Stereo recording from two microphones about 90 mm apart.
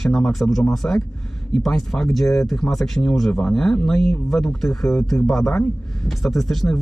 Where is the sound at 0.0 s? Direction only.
5° left (ahead or behind).